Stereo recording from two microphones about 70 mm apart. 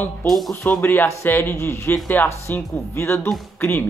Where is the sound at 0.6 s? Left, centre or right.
Left.